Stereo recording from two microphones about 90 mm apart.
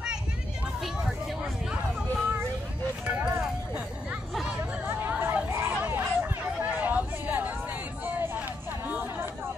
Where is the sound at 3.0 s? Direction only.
10° right (ahead or behind).